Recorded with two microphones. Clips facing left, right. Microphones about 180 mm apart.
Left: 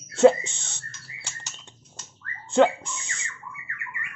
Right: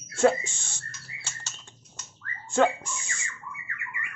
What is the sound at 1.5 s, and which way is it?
Typing, 15° left (ahead or behind).